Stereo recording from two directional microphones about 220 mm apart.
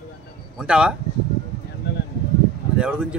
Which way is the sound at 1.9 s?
50° left (ahead or behind).